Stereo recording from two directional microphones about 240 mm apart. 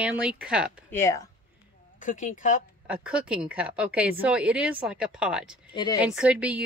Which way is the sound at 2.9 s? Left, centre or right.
Centre.